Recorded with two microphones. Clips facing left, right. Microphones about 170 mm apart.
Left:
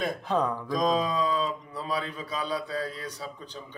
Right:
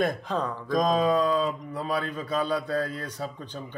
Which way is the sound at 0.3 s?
10° left (ahead or behind).